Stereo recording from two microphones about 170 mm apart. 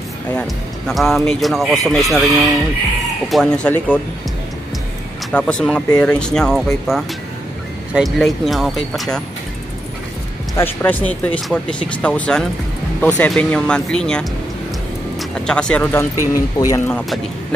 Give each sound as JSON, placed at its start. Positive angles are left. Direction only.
{"t": 0.4, "sound": "speech", "side_deg": 0}
{"t": 5.3, "sound": "speech", "side_deg": 5}
{"t": 10.6, "sound": "speech", "side_deg": 10}